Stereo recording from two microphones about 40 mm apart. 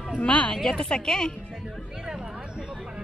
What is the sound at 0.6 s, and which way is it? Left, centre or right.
Speech, centre.